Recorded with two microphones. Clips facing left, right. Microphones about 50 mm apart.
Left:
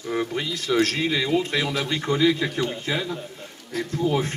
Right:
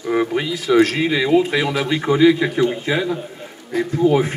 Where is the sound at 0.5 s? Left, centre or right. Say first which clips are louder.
Right 7 dB; centre.